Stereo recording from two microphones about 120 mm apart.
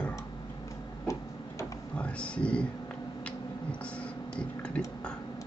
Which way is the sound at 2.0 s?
10° left (ahead or behind).